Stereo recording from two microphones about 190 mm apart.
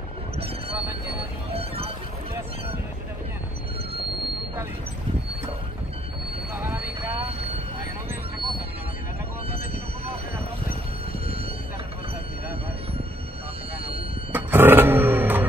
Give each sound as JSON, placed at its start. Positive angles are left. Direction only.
{"t": 1.5, "sound": "music", "side_deg": -30}
{"t": 6.5, "sound": "vehicle", "side_deg": -15}
{"t": 9.5, "sound": "train", "side_deg": -30}
{"t": 14.3, "sound": "vehicle", "side_deg": -10}